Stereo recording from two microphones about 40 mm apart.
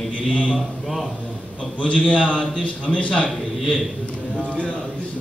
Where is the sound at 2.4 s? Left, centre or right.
Left.